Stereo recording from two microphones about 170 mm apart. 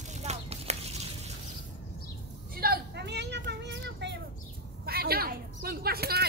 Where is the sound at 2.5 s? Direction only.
75° right (ahead or behind).